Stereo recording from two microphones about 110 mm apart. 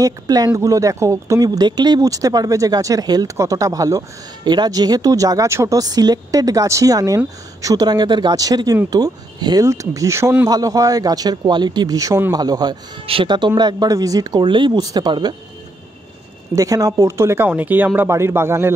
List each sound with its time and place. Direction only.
0.0 s speech: 35° right (ahead or behind)
13.0 s speech: 55° right (ahead or behind)
16.5 s speech: 30° right (ahead or behind)